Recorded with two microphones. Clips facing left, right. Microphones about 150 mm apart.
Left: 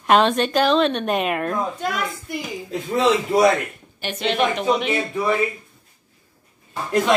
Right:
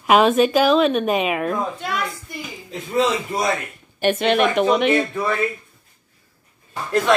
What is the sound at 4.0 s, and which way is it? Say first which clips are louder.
Speech: right 4 dB; 55° right (ahead or behind).